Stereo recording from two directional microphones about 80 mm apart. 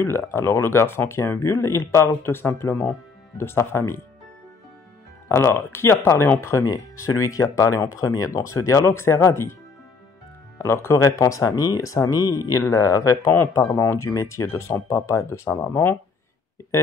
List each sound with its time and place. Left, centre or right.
0.0 s speech: left
5.3 s speech: left
6.6 s speech: left
10.6 s speech: left
13.3 s speech: left
13.6 s speech: left